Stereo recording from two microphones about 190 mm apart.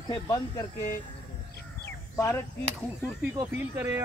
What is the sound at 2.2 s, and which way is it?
Chop, 15° left (ahead or behind).